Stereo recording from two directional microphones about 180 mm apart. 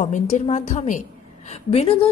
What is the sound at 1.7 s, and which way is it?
Speech, 30° left (ahead or behind).